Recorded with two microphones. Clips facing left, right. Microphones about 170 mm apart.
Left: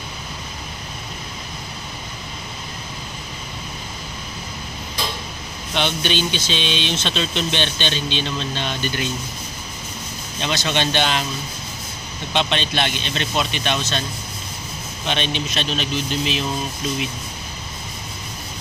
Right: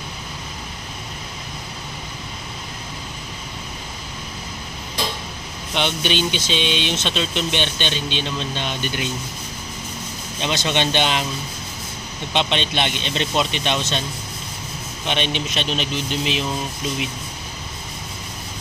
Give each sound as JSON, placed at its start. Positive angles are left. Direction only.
{"t": 5.8, "sound": "speech", "side_deg": -15}
{"t": 10.4, "sound": "speech", "side_deg": -20}
{"t": 12.4, "sound": "speech", "side_deg": -20}
{"t": 15.0, "sound": "speech", "side_deg": -20}